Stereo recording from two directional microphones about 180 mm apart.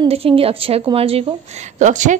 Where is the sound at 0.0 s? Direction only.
30° right (ahead or behind).